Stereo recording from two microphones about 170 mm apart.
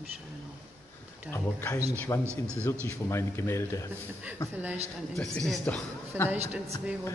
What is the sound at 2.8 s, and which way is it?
Speech, 15° left (ahead or behind).